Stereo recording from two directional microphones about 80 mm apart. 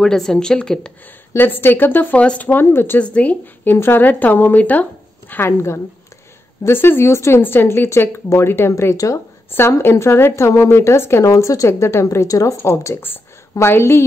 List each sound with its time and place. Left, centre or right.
0.0 s a woman's voice: centre
1.3 s speech: left
3.0 s a woman's voice: centre
3.7 s speech: left
5.3 s a woman's voice: left
8.9 s a woman's voice: left
9.5 s a woman's voice: left